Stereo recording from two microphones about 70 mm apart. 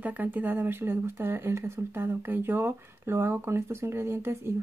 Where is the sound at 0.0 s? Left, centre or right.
Right.